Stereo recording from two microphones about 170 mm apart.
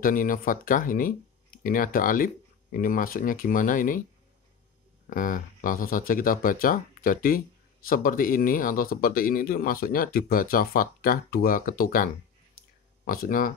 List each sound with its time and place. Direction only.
0.0 s speech: 55° left (ahead or behind)
5.1 s speech: 50° left (ahead or behind)